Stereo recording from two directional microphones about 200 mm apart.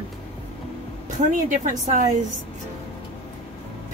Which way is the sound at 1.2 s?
40° right (ahead or behind).